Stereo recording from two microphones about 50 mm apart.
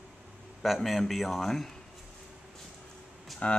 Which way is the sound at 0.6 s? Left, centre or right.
Centre.